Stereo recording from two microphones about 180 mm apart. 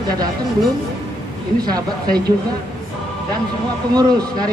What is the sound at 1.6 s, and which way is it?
Speech, 20° right (ahead or behind).